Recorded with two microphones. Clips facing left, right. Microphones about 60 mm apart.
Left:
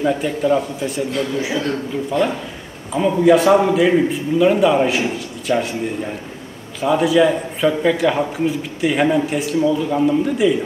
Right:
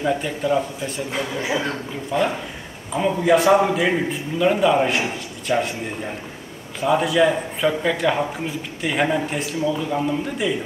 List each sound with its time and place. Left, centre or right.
0.0 s a man's voice: centre
6.8 s a man's voice: centre